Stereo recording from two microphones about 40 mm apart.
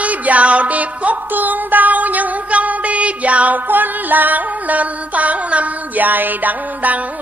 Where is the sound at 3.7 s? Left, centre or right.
Right.